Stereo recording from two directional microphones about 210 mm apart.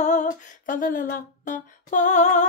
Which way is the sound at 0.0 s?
35° left (ahead or behind).